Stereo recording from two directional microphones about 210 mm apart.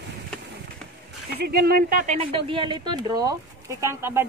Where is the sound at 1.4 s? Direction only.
45° right (ahead or behind).